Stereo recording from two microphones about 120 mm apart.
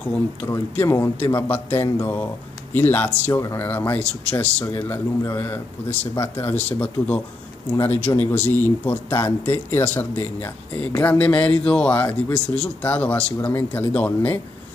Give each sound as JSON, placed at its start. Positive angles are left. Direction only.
{"t": 0.5, "sound": "a man's voice", "side_deg": 20}